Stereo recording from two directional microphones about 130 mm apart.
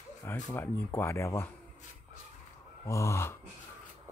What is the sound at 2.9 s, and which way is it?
Speech, 25° left (ahead or behind).